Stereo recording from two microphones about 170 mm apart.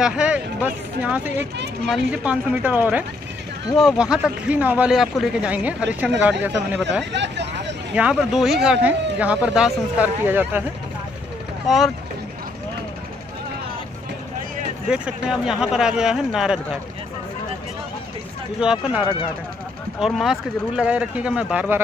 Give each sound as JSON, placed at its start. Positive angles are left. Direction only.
{"t": 0.0, "sound": "speech", "side_deg": -5}
{"t": 7.1, "sound": "speech", "side_deg": -90}
{"t": 7.9, "sound": "speech", "side_deg": -5}
{"t": 11.6, "sound": "speech", "side_deg": 0}
{"t": 14.9, "sound": "speech", "side_deg": -5}
{"t": 18.6, "sound": "speech", "side_deg": -5}